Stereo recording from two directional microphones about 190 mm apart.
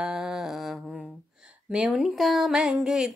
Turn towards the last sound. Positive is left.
turn(degrees=-5)  # may be behind; listen again after turning